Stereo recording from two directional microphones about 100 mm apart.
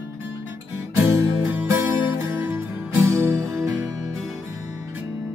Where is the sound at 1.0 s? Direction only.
30° right (ahead or behind).